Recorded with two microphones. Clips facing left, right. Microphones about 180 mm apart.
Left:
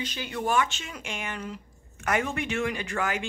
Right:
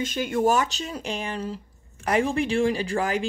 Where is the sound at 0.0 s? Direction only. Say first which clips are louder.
Right 8 dB; 45° right (ahead or behind).